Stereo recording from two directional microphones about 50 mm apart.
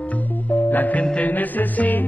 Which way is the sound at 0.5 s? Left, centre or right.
Left.